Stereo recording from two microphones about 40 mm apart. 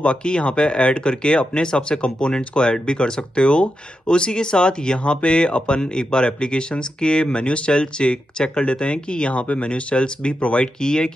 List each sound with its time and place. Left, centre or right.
0.0 s speech: left